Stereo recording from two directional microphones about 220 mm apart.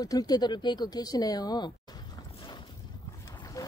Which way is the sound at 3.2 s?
15° left (ahead or behind).